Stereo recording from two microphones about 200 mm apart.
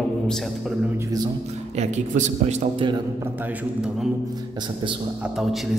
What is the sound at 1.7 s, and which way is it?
Speech, 35° right (ahead or behind).